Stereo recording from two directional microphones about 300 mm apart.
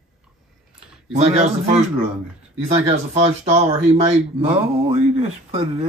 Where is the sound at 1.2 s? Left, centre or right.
Right.